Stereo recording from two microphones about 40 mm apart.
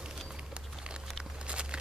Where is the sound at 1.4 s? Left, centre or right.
Right.